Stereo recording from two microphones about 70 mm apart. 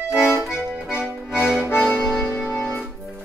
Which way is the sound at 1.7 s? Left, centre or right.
Left.